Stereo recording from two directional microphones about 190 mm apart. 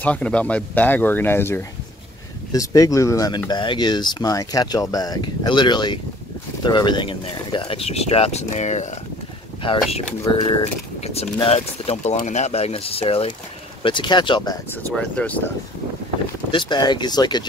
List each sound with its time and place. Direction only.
0.0 s speech: 5° left (ahead or behind)
15.0 s speech: 5° left (ahead or behind)
16.5 s speech: 25° left (ahead or behind)